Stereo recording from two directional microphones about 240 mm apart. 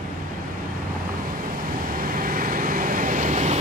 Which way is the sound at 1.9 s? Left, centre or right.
Right.